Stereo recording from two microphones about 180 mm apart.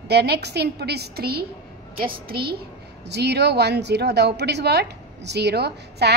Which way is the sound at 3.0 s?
65° right (ahead or behind).